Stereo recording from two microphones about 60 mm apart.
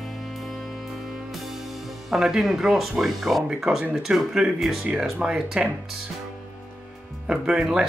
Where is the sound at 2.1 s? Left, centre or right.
Centre.